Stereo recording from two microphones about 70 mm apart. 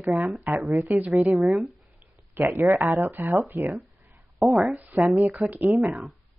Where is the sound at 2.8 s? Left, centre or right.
Right.